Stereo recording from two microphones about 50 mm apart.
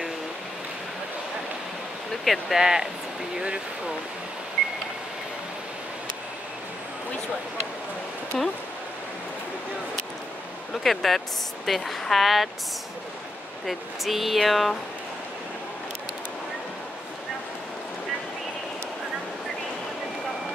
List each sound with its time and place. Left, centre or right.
2.2 s speech: centre
2.6 s speech: centre
8.3 s speech: centre
10.8 s speech: centre
13.7 s speech: centre